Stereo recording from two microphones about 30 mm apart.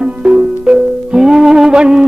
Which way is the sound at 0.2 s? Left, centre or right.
Right.